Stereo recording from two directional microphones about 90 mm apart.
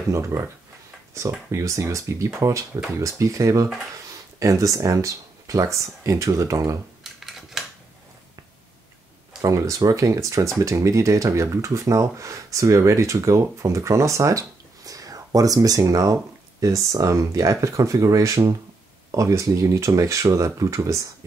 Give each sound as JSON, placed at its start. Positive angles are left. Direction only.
{"t": 0.1, "sound": "speech", "side_deg": -35}
{"t": 7.0, "sound": "a sound", "side_deg": -5}
{"t": 9.4, "sound": "speech", "side_deg": -35}